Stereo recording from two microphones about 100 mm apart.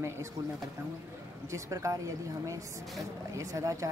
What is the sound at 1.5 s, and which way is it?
Speech, 30° right (ahead or behind).